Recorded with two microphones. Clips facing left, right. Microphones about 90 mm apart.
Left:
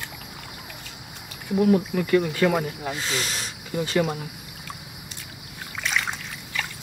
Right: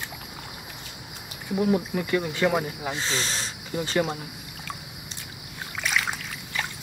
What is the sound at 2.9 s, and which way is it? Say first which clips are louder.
Speech: right 2 dB; 30° right (ahead or behind).